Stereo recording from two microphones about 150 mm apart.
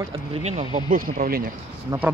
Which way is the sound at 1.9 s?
25° right (ahead or behind).